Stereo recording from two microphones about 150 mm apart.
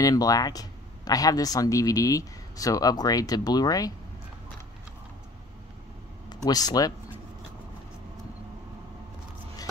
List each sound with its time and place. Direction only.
0.0 s speech: 25° left (ahead or behind)
6.2 s speech: 25° left (ahead or behind)